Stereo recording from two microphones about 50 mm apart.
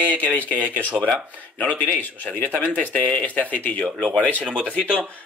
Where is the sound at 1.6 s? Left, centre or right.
Left.